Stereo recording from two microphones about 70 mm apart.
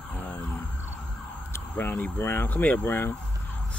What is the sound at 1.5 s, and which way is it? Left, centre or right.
Speech, left.